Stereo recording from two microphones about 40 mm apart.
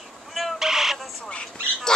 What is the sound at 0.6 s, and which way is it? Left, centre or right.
Bird, centre.